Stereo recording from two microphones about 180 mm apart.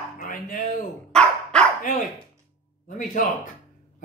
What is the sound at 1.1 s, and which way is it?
Dog, 5° left (ahead or behind).